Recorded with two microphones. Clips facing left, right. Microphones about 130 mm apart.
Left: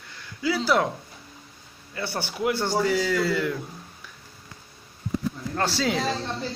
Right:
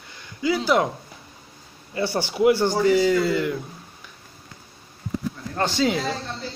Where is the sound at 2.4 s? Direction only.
5° right (ahead or behind).